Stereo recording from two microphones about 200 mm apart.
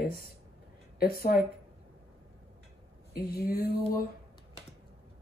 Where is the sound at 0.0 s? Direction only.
50° left (ahead or behind).